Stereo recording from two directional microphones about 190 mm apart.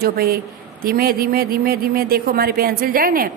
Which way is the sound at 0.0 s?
50° right (ahead or behind).